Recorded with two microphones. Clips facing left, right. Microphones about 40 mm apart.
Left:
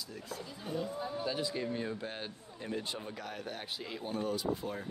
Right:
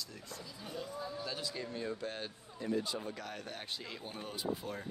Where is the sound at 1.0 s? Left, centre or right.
Left.